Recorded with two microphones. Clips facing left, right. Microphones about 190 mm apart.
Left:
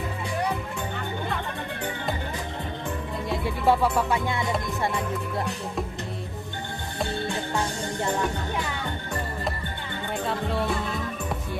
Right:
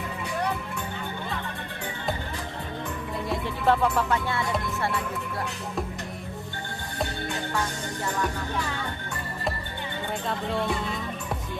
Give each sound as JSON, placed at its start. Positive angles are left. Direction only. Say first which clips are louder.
{"t": 3.4, "sound": "music", "louder": "left 2 dB", "side_deg": 10}
{"t": 7.5, "sound": "music", "louder": "left 2 dB", "side_deg": 25}